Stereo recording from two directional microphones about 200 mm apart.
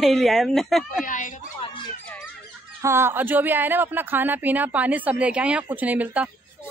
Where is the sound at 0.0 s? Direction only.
Centre (ahead or behind).